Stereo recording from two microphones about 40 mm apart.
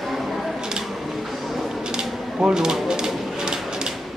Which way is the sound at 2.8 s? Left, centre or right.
Centre.